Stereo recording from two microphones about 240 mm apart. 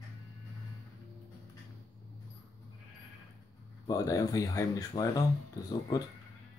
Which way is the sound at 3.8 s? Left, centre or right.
Centre.